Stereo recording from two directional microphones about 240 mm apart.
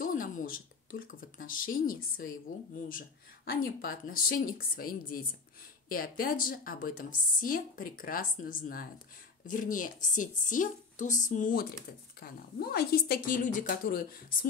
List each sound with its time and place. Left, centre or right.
0.0 s a woman's voice: left